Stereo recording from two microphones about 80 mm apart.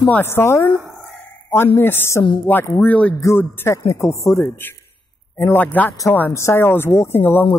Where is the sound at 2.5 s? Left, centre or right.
Left.